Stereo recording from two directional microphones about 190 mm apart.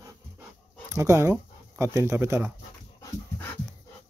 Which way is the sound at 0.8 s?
15° right (ahead or behind).